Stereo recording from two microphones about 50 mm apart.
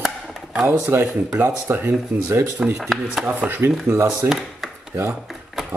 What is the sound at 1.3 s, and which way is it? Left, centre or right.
Speech, right.